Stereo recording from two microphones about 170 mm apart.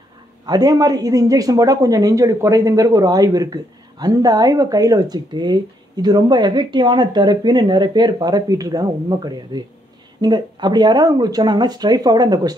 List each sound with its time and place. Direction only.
0.5 s speech: 20° right (ahead or behind)